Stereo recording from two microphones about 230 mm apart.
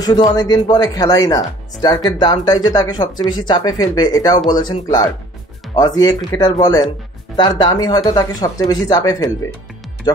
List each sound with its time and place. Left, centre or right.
0.0 s speech: centre